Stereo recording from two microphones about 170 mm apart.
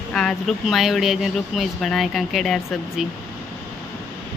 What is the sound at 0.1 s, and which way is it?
Speech, 5° left (ahead or behind).